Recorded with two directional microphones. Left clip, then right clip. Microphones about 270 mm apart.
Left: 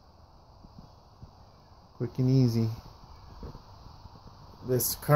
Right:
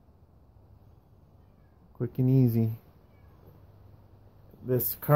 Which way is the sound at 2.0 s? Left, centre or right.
Centre.